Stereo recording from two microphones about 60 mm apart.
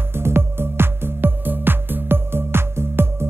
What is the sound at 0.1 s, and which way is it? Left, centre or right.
Music, right.